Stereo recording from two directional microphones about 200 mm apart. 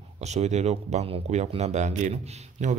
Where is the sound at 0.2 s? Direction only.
35° right (ahead or behind).